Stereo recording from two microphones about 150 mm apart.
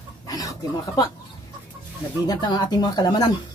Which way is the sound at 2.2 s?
25° left (ahead or behind).